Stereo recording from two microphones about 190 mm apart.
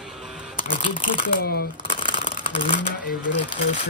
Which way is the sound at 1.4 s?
55° left (ahead or behind).